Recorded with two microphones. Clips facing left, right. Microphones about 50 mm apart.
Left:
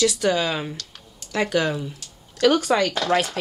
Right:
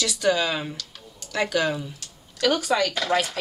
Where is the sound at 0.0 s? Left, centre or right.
Left.